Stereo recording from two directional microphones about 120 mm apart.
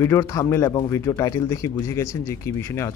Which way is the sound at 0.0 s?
25° left (ahead or behind).